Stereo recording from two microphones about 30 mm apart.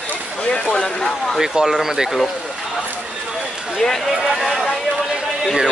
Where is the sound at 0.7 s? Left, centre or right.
Left.